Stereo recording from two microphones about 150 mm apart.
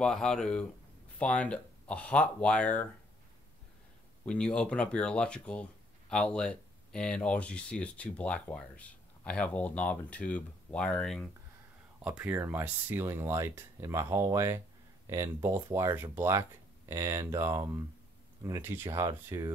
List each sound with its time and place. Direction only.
0.0 s speech: 5° left (ahead or behind)
4.3 s speech: 5° left (ahead or behind)
12.0 s speech: 10° right (ahead or behind)